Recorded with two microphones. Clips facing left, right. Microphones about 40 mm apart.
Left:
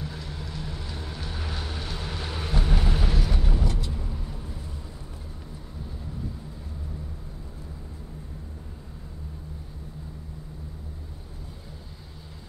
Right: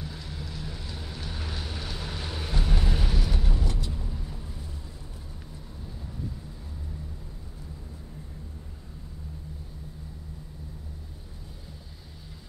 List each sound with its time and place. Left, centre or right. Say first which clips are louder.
0.0 s vehicle: left 2 dB; centre